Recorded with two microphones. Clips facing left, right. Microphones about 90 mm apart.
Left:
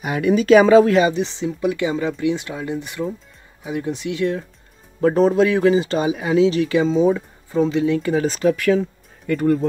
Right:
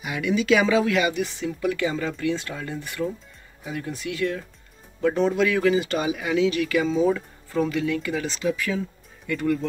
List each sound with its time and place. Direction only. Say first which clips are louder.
0.0 s speech: left 6 dB; 45° left (ahead or behind); by 4.5 s 25° left (ahead or behind)
5.0 s speech: left 6 dB; 40° left (ahead or behind); by 8.8 s 65° left (ahead or behind)
9.3 s speech: left 6 dB; 40° left (ahead or behind)